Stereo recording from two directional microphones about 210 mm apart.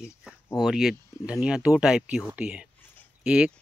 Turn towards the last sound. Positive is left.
turn(degrees=-5)  # may be behind; listen again after turning